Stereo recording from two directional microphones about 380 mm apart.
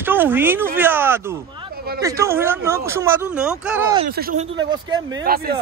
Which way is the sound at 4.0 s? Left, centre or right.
Right.